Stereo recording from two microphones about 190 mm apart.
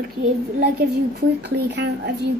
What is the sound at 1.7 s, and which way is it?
Speech, 65° right (ahead or behind).